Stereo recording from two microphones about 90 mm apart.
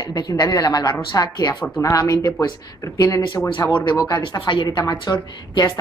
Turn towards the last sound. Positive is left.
turn(degrees=50)  # may be behind; listen again after turning